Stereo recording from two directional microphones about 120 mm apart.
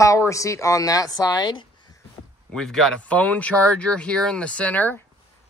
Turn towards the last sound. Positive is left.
turn(degrees=15)  # may be behind; listen again after turning